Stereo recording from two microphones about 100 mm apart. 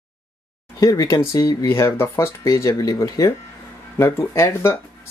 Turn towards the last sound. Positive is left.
turn(degrees=30)  # may be behind; listen again after turning